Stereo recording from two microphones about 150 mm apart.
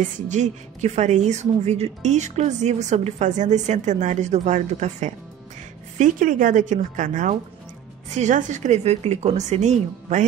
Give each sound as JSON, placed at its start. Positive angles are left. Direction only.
{"t": 0.0, "sound": "a woman's voice", "side_deg": -50}